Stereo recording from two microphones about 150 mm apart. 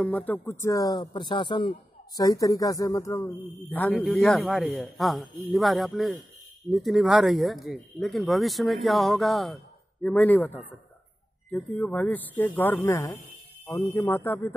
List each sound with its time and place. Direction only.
0.0 s speech: 10° left (ahead or behind)
4.0 s speech: 5° left (ahead or behind)
10.0 s speech: 10° left (ahead or behind)